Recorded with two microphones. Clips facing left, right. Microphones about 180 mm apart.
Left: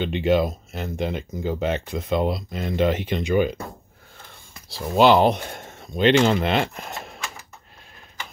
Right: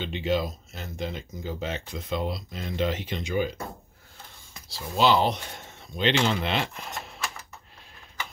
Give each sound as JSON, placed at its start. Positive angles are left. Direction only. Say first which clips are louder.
{"t": 0.0, "sound": "speech", "louder": "left 7 dB", "side_deg": 60}
{"t": 4.6, "sound": "speech", "louder": "left 6 dB", "side_deg": 60}